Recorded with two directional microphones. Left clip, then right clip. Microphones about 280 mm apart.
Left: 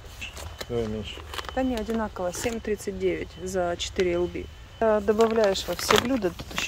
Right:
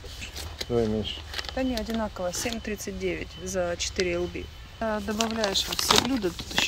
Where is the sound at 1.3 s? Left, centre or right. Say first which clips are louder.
Left 3 dB; centre.